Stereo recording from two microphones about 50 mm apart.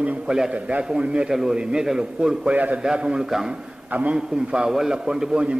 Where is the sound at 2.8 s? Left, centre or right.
Centre.